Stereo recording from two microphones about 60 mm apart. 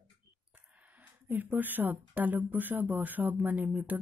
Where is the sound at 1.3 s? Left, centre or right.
Right.